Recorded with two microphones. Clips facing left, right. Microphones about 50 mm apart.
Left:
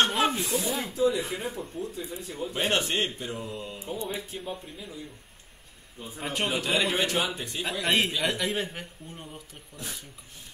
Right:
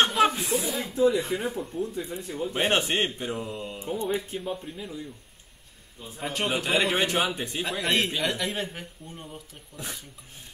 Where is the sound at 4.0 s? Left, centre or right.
Right.